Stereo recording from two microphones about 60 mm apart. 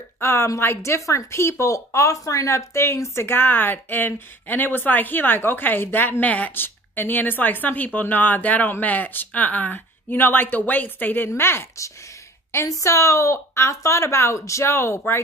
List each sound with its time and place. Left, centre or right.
0.2 s a woman's voice: left
12.6 s a woman's voice: left